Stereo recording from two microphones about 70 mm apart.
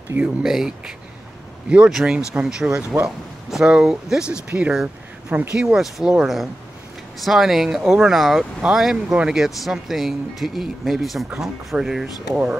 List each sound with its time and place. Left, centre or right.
0.2 s speech: centre